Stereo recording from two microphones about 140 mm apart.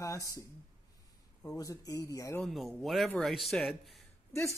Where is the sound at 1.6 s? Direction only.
25° left (ahead or behind).